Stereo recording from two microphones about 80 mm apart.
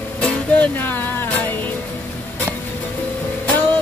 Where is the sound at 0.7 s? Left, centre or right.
Left.